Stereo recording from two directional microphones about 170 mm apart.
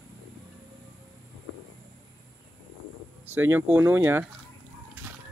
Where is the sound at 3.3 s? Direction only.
15° right (ahead or behind).